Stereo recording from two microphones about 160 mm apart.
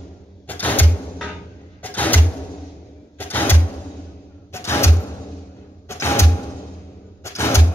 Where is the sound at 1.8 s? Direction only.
10° left (ahead or behind).